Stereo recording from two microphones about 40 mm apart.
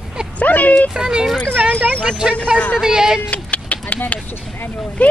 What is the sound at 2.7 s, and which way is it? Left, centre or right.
Speech, centre.